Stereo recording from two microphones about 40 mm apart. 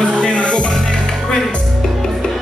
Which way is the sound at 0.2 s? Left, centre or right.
Left.